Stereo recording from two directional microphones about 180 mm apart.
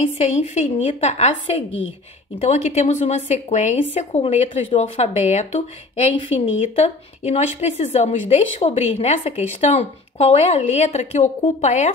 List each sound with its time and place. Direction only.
0.3 s a woman's voice: 40° left (ahead or behind)